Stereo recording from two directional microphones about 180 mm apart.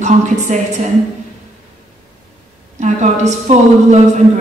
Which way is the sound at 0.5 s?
40° right (ahead or behind).